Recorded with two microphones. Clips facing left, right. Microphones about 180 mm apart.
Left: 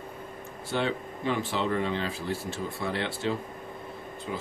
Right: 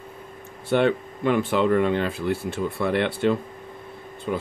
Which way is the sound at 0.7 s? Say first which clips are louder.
Right 9 dB; 60° right (ahead or behind).